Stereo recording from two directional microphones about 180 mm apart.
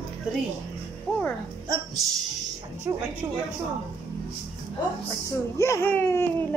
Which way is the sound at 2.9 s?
10° right (ahead or behind).